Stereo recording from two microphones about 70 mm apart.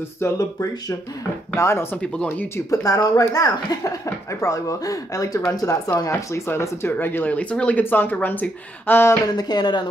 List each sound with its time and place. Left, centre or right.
0.4 s speech: left
1.5 s speech: left
2.7 s speech: left
3.3 s speech: left
6.4 s speech: left
9.3 s speech: left